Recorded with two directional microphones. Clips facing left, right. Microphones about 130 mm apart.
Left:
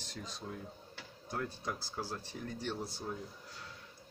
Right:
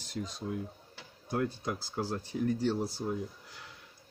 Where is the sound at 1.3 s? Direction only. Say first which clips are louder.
Right 6 dB; 15° right (ahead or behind).